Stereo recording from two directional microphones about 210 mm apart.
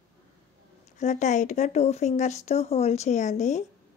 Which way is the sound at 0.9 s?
35° left (ahead or behind).